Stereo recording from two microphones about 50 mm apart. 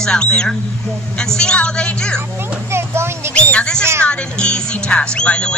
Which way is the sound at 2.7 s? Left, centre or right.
Right.